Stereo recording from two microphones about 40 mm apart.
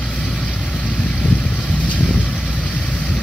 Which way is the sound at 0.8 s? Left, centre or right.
Left.